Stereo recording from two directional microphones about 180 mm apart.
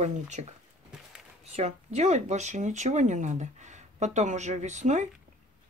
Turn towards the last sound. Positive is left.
turn(degrees=-40)  # may be behind; listen again after turning